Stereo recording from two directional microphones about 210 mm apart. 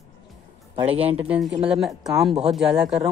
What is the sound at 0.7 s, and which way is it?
Speech, 30° right (ahead or behind).